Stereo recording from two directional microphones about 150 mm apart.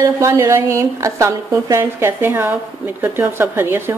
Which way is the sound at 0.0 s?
20° right (ahead or behind).